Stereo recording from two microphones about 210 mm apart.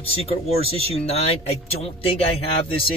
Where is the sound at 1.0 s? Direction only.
30° left (ahead or behind).